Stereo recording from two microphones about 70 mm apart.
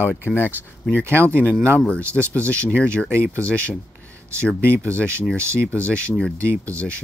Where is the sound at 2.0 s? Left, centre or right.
Right.